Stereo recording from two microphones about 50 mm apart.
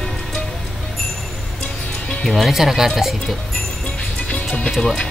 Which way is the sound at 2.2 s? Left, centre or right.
Centre.